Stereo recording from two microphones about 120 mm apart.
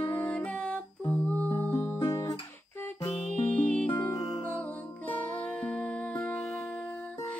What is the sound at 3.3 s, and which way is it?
Music, 10° left (ahead or behind).